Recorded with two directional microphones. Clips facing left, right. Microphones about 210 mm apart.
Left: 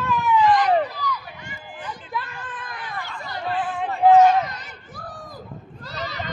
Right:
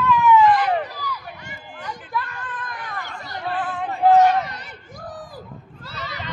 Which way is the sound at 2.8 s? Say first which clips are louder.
Even; 45° right (ahead or behind).